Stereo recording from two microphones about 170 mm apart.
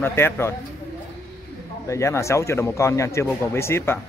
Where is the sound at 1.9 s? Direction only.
15° left (ahead or behind).